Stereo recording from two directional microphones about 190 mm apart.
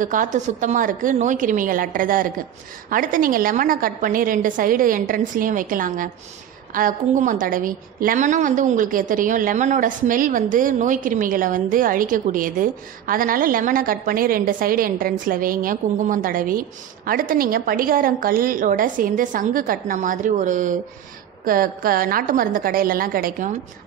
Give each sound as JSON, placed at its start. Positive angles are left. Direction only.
{"t": 0.0, "sound": "a woman's voice", "side_deg": -45}